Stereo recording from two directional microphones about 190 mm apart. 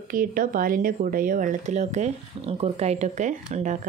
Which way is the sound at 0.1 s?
45° right (ahead or behind).